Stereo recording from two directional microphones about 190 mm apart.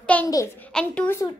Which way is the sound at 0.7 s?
5° left (ahead or behind).